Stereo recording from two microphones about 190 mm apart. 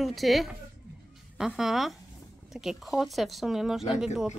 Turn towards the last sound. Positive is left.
turn(degrees=-5)  # may be behind; listen again after turning